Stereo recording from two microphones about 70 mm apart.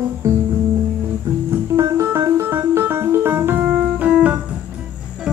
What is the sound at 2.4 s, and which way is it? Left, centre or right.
Keyboard, right.